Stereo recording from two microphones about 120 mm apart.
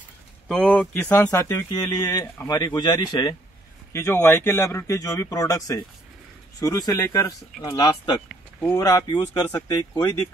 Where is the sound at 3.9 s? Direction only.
20° left (ahead or behind).